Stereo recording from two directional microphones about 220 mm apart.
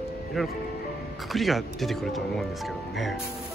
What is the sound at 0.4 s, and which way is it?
Speech, centre (ahead or behind).